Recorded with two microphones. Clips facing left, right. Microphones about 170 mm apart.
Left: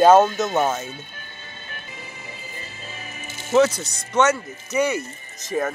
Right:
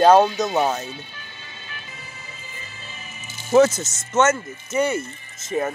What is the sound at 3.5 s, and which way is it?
Speech, 5° right (ahead or behind).